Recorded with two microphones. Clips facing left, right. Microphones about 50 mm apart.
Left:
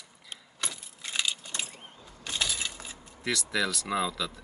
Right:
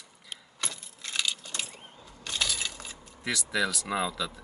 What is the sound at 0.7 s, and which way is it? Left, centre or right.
Coin, centre.